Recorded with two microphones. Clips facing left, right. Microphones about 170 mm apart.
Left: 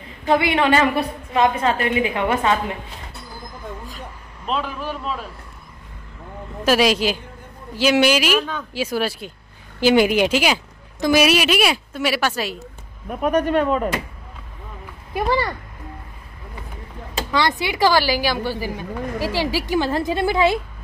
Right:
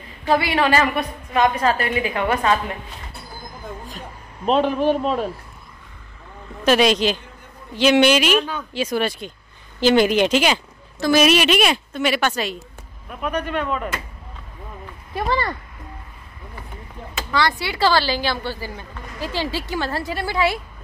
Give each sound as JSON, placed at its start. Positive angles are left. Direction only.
{"t": 0.3, "sound": "a woman's voice", "side_deg": 20}
{"t": 4.5, "sound": "a man's voice", "side_deg": -40}
{"t": 6.6, "sound": "a woman's voice", "side_deg": 5}
{"t": 13.1, "sound": "speech", "side_deg": 45}
{"t": 15.1, "sound": "speech", "side_deg": 10}
{"t": 17.3, "sound": "speech", "side_deg": 20}